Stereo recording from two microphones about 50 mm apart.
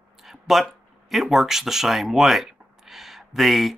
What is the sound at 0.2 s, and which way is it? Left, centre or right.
Speech, centre.